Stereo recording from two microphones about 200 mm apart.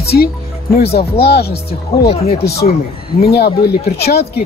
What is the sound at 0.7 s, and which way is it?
Speech, 50° left (ahead or behind).